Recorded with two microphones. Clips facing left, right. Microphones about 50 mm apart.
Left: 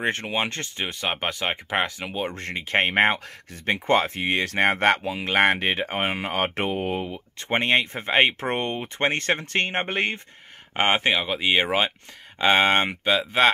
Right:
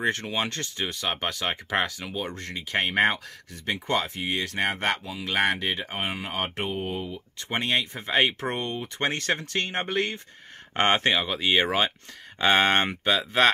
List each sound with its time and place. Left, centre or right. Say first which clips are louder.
0.0 s speech: left 1 dB; left
7.4 s speech: left 5 dB; left
10.8 s speech: left 1 dB; centre